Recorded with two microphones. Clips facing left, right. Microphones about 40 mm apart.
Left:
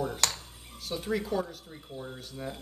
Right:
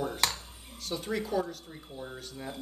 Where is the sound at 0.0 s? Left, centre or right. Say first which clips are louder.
Even; centre.